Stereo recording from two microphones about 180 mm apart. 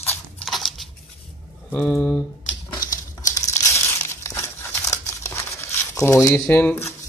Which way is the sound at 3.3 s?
15° left (ahead or behind).